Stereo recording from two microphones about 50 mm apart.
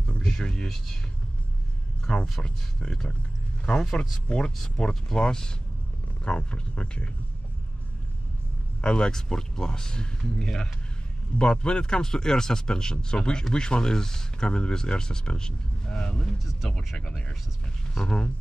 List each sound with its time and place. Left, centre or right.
0.4 s speech: centre
2.1 s speech: centre
3.8 s speech: centre
4.8 s speech: centre
8.8 s speech: centre